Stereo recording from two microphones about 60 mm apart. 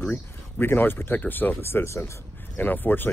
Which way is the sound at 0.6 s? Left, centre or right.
Left.